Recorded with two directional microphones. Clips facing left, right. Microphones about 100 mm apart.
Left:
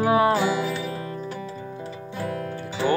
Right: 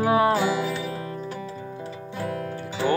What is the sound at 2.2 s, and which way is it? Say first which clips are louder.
Music: even; 10° right (ahead or behind).